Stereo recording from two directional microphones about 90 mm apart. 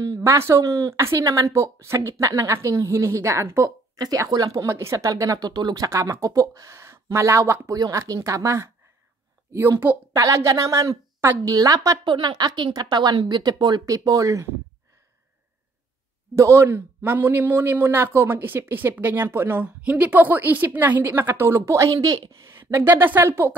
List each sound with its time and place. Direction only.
0.2 s speech: 30° right (ahead or behind)
4.0 s speech: 45° right (ahead or behind)
5.5 s speech: 50° right (ahead or behind)
5.9 s speech: 35° right (ahead or behind)
7.7 s speech: 40° right (ahead or behind)
11.4 s speech: 40° right (ahead or behind)
12.0 s speech: 60° right (ahead or behind)
13.8 s speech: 40° right (ahead or behind)
16.3 s speech: 30° right (ahead or behind)
22.6 s speech: 25° right (ahead or behind)